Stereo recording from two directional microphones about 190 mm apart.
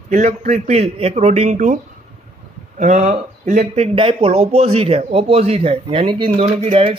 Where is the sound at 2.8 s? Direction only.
45° right (ahead or behind).